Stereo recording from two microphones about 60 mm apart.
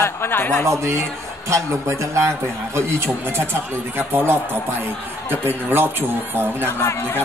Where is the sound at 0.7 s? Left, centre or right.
Right.